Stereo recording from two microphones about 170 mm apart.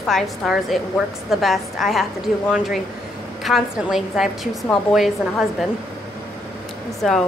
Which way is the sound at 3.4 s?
Centre (ahead or behind).